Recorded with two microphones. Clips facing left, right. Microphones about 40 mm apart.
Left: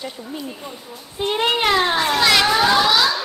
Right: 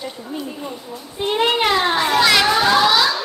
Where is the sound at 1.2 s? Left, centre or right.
Centre.